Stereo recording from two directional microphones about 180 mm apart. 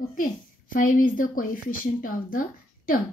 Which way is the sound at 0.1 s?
50° left (ahead or behind).